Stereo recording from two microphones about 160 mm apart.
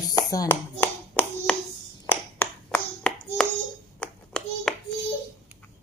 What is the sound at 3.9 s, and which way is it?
Clapping, 5° left (ahead or behind).